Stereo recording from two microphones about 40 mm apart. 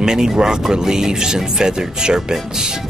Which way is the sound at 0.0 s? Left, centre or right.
Centre.